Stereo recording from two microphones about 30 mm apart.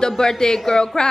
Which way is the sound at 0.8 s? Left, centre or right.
Left.